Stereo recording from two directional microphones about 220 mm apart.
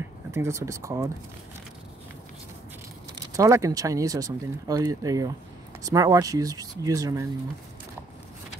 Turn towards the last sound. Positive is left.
turn(degrees=-15)  # may be behind; listen again after turning